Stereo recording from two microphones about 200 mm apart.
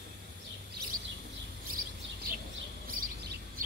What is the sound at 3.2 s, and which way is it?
Bird, 55° right (ahead or behind).